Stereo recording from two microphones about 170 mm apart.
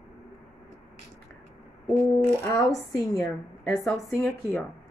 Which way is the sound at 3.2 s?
Centre (ahead or behind).